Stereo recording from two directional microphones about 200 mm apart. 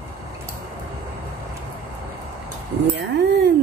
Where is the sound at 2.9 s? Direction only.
60° right (ahead or behind).